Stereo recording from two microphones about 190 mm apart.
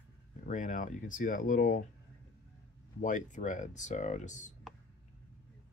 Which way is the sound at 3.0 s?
40° left (ahead or behind).